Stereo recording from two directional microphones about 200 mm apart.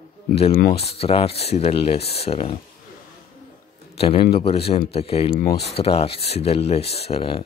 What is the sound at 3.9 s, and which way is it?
Speech, 30° left (ahead or behind).